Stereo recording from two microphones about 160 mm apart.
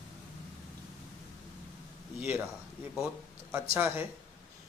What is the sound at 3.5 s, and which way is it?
Speech, 15° right (ahead or behind).